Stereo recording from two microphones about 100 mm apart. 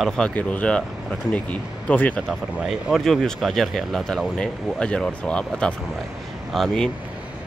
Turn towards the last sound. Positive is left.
turn(degrees=5)  # may be behind; listen again after turning